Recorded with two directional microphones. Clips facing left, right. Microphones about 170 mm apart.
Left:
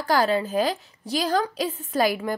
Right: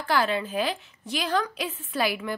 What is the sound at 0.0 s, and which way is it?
A woman's voice, 40° left (ahead or behind).